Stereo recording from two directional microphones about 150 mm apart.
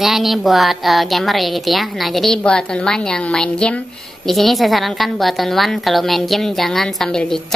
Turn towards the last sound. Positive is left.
turn(degrees=5)  # may be behind; listen again after turning